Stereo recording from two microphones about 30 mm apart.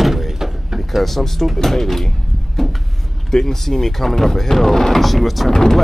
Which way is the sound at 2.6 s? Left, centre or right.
Centre.